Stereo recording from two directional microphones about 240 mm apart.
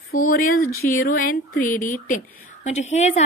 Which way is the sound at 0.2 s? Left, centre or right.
Left.